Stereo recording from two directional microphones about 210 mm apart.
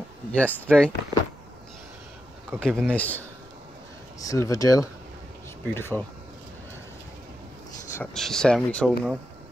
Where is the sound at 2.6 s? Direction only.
5° left (ahead or behind).